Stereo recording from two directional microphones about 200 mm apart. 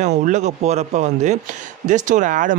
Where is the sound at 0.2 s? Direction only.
35° right (ahead or behind).